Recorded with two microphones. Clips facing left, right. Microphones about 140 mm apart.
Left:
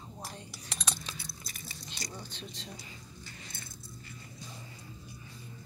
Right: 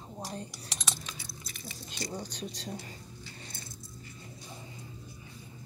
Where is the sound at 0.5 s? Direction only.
Centre (ahead or behind).